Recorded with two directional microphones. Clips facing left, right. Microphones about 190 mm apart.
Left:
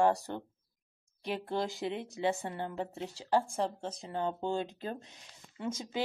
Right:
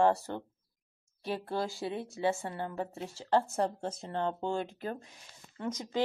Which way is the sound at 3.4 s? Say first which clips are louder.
Right 2 dB; 5° right (ahead or behind).